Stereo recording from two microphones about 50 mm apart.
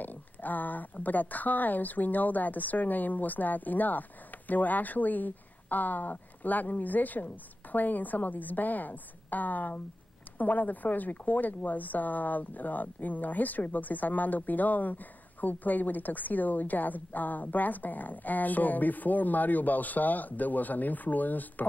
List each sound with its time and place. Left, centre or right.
0.0 s speech: left